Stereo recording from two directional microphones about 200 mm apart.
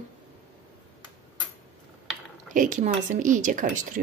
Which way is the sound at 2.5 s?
40° right (ahead or behind).